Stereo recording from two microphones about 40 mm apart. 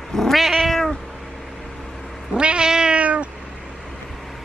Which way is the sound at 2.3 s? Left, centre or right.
Right.